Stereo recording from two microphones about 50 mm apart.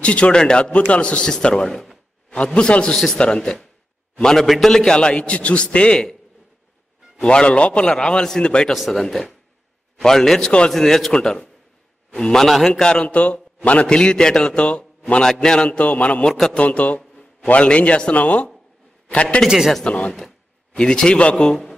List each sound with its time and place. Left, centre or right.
0.0 s a man's voice: left
1.3 s a man's voice: centre
2.3 s a man's voice: left
7.2 s a man's voice: centre
12.8 s a man's voice: left
16.3 s a man's voice: centre
16.5 s a man's voice: left
17.1 s a sound: centre
17.5 s a man's voice: left
19.4 s a man's voice: centre
19.8 s a man's voice: left